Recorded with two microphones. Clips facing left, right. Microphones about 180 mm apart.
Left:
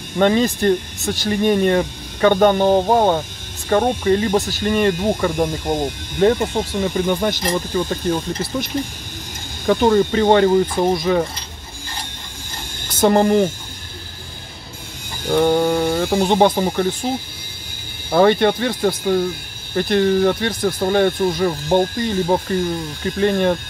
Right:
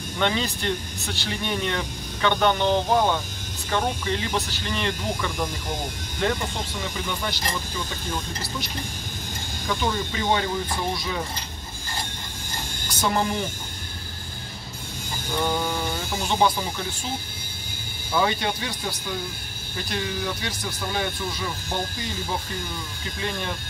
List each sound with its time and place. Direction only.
0.2 s speech: 45° left (ahead or behind)
6.8 s speech: 50° left (ahead or behind)
9.7 s speech: 55° left (ahead or behind)
13.0 s speech: 55° left (ahead or behind)
15.2 s speech: 65° left (ahead or behind)
18.1 s speech: 60° left (ahead or behind)